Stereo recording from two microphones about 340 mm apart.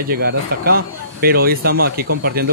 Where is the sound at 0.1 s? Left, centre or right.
Right.